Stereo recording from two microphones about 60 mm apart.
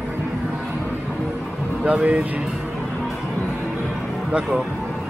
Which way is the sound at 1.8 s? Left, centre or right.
Right.